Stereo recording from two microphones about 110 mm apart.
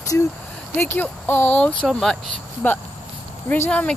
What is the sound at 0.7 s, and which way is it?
Speech, 20° left (ahead or behind).